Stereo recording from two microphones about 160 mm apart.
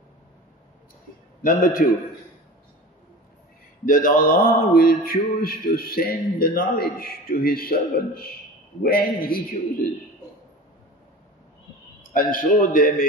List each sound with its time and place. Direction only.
1.4 s a man's voice: 60° left (ahead or behind)
3.8 s a sound: 60° left (ahead or behind)
12.1 s a man's voice: 60° left (ahead or behind)